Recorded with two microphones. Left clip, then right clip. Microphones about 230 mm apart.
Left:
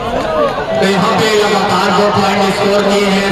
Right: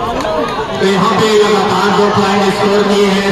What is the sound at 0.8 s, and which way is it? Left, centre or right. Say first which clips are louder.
Speech: right 1 dB; left.